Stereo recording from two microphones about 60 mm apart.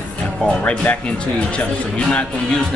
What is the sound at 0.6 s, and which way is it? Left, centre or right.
Speech, left.